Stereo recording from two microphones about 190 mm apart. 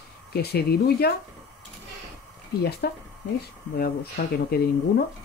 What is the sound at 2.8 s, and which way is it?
Speech, 55° left (ahead or behind).